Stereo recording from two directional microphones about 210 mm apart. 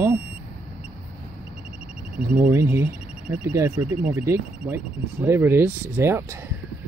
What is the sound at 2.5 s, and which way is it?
Speech, 10° right (ahead or behind).